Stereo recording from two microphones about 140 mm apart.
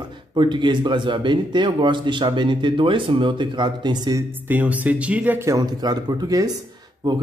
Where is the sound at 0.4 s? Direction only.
35° right (ahead or behind).